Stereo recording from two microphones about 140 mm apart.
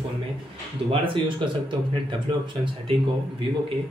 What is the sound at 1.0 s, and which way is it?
Speech, 35° right (ahead or behind).